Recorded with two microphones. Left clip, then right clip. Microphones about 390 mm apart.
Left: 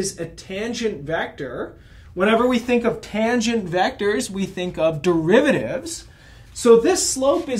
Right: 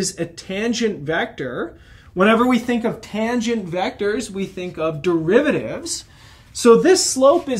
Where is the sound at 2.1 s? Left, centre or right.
Right.